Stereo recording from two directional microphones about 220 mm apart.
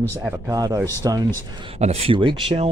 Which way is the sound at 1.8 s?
25° right (ahead or behind).